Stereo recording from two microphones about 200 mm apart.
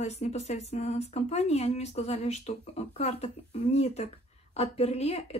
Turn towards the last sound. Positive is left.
turn(degrees=30)  # may be behind; listen again after turning